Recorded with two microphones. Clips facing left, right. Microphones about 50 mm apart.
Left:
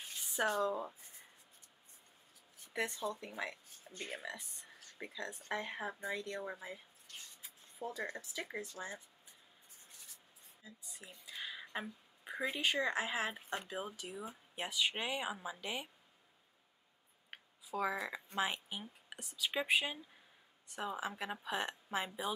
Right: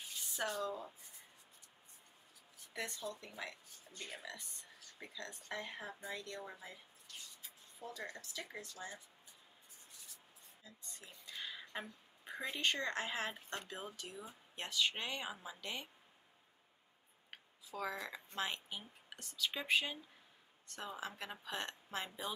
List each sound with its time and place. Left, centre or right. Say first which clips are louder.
0.5 s speech: left 8 dB; left
2.7 s speech: left 5 dB; centre
3.9 s speech: left 4 dB; left
7.8 s speech: left 5 dB; left
10.6 s speech: left 3 dB; centre
17.3 s speech: left 6 dB; centre